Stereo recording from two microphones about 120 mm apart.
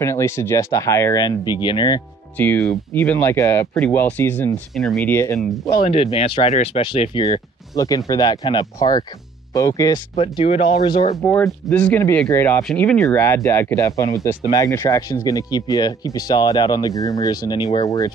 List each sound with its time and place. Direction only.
0.0 s speech: 25° left (ahead or behind)
1.2 s speech: 35° left (ahead or behind)
2.3 s speech: 15° left (ahead or behind)
4.7 s speech: centre (ahead or behind)
5.0 s speech: 20° left (ahead or behind)
5.8 s speech: 55° left (ahead or behind)
6.8 s speech: 45° left (ahead or behind)
7.7 s speech: 30° left (ahead or behind)
10.1 s speech: 55° left (ahead or behind)
11.1 s speech: 25° left (ahead or behind)
11.7 s speech: 15° left (ahead or behind); by 18.1 s 30° left (ahead or behind)